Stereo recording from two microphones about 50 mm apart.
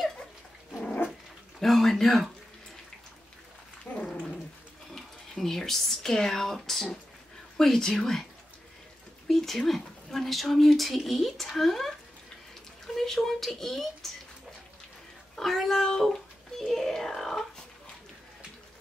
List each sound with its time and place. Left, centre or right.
1.6 s speech: centre
3.9 s dog: left
4.9 s a woman's voice: centre
9.3 s a child's voice: centre
15.3 s a sound: centre